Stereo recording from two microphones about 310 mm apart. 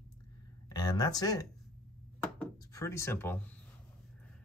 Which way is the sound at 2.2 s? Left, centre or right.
Centre.